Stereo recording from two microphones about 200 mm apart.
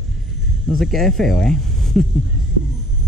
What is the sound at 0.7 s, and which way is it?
Speech, centre (ahead or behind).